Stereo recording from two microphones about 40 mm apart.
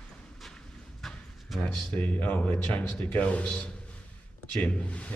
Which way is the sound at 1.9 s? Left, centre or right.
Left.